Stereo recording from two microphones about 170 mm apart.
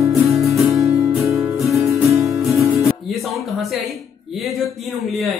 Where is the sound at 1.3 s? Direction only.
15° right (ahead or behind).